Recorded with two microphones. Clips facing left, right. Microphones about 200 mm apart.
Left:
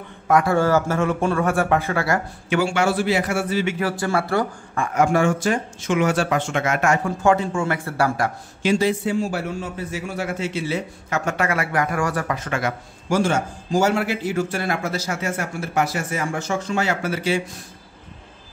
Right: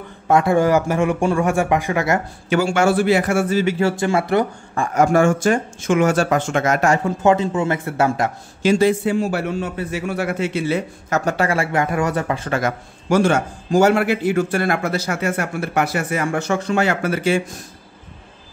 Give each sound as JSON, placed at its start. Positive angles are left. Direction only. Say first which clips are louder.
{"t": 0.3, "sound": "speech", "louder": "right 2 dB", "side_deg": -20}
{"t": 2.5, "sound": "speech", "louder": "right 3 dB", "side_deg": -45}
{"t": 3.8, "sound": "speech", "louder": "right 4 dB", "side_deg": -20}
{"t": 4.9, "sound": "speech", "louder": "right 3 dB", "side_deg": -45}
{"t": 7.1, "sound": "speech", "louder": "right 3 dB", "side_deg": -20}
{"t": 8.6, "sound": "a man's voice", "louder": "right 4 dB", "side_deg": -55}
{"t": 11.1, "sound": "speech", "louder": "right 3 dB", "side_deg": -40}
{"t": 13.1, "sound": "a man's voice", "louder": "right 4 dB", "side_deg": -60}